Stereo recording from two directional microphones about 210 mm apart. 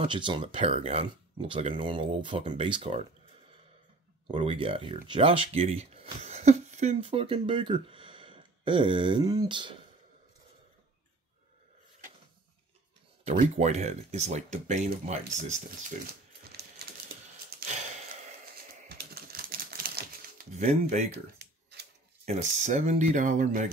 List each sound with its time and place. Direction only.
0.0 s speech: 20° right (ahead or behind)
4.3 s speech: 25° right (ahead or behind)
13.2 s speech: 35° right (ahead or behind)
17.6 s a sound: 40° right (ahead or behind)
18.9 s typing: 45° right (ahead or behind)
21.1 s a sound: 50° right (ahead or behind)
22.2 s speech: 35° right (ahead or behind)